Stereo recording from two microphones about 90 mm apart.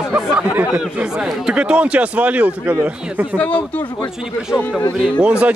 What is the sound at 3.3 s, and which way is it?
Speech, 15° left (ahead or behind).